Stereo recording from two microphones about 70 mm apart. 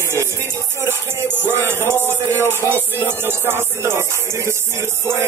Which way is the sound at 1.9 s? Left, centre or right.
Left.